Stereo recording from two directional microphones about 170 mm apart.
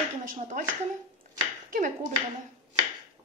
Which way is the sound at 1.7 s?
50° right (ahead or behind).